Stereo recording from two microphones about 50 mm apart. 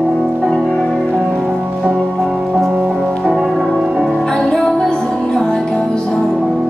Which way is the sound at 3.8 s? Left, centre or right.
Centre.